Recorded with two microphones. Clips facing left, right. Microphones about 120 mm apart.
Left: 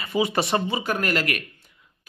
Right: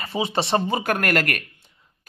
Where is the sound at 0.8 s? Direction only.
55° right (ahead or behind).